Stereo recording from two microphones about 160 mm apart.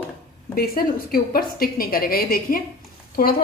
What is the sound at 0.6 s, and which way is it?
A woman's voice, 70° left (ahead or behind).